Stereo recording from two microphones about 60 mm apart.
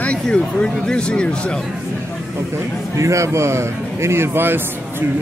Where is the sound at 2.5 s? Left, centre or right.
Right.